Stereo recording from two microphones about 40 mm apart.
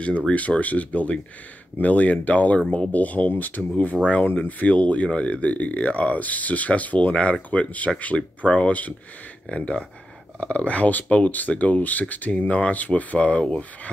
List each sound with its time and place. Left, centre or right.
0.3 s speech: left
2.9 s speech: left